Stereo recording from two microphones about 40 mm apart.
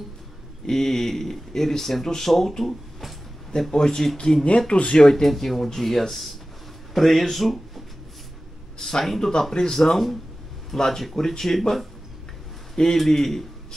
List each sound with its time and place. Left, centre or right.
0.7 s speech: centre
3.7 s speech: centre
5.1 s a man's voice: centre